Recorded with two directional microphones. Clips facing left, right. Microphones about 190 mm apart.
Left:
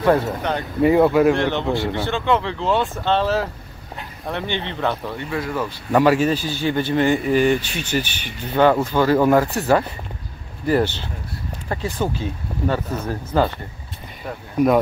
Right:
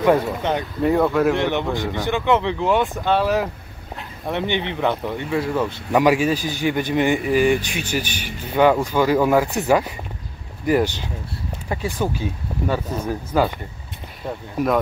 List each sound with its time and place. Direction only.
0.0 s a man's voice: 15° right (ahead or behind)
0.8 s speech: 5° left (ahead or behind)
1.3 s a man's voice: 15° right (ahead or behind)
5.9 s a man's voice: 10° right (ahead or behind)
14.6 s speech: 5° right (ahead or behind)